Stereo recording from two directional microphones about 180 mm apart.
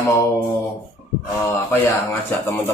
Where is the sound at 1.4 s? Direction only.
10° left (ahead or behind).